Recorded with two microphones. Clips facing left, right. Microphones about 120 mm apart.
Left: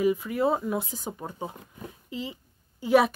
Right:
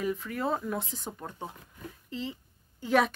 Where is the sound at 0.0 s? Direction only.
10° left (ahead or behind).